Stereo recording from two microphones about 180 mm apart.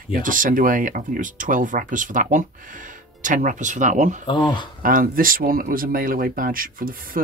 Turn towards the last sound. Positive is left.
turn(degrees=-50)  # may be behind; listen again after turning